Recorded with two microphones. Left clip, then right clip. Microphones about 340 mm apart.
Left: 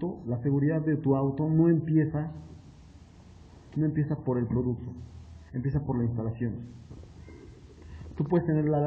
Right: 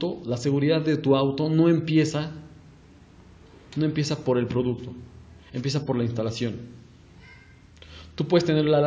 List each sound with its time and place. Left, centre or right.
0.3 s a man's voice: left
3.8 s a man's voice: left
8.3 s a man's voice: left